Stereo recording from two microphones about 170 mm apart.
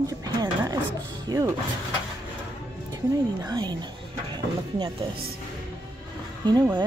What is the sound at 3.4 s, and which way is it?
Speech, 25° right (ahead or behind).